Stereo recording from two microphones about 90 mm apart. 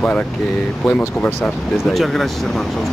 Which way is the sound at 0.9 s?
15° left (ahead or behind).